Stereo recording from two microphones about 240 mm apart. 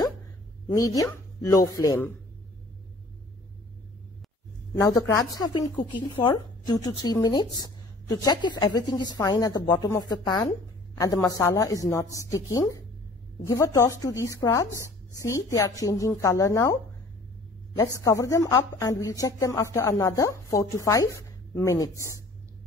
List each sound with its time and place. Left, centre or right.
0.7 s a woman's voice: centre
4.7 s a woman's voice: centre
18.0 s a woman's voice: centre